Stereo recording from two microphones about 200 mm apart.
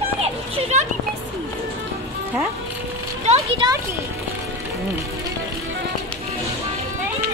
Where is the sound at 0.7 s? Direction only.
35° right (ahead or behind).